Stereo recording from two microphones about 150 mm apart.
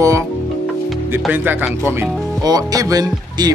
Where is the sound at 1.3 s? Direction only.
10° right (ahead or behind).